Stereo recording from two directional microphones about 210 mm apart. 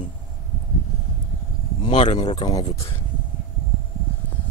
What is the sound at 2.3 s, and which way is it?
Speech, 20° left (ahead or behind).